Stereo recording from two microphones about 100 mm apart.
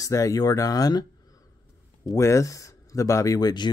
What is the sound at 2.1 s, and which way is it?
Speech, 30° left (ahead or behind).